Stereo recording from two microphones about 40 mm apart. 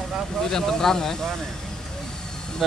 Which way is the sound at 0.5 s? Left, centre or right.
Centre.